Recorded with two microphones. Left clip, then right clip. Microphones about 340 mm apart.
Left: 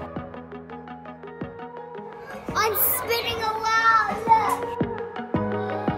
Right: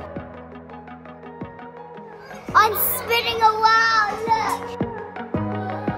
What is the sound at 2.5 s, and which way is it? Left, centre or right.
Music, centre.